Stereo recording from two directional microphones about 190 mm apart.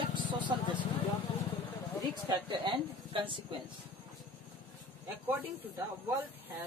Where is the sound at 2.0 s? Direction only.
20° right (ahead or behind).